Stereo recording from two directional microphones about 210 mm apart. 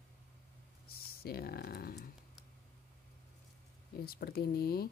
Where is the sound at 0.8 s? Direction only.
45° left (ahead or behind).